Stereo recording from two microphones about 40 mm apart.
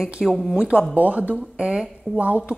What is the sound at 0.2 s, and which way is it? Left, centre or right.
Speech, centre.